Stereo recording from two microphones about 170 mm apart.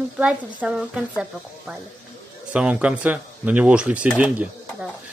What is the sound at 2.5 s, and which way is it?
A woman's voice, 5° right (ahead or behind).